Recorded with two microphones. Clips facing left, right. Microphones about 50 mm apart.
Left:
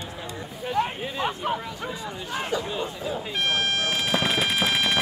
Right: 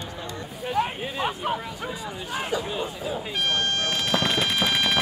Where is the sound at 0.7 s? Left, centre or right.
Centre.